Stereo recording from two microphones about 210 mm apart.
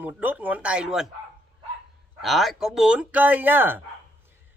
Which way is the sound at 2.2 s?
Centre (ahead or behind).